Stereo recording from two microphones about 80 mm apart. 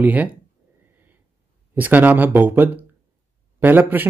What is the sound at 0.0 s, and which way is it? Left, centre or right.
Speech, centre.